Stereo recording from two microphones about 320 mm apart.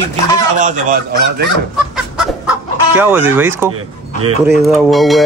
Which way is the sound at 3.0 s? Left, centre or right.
Centre.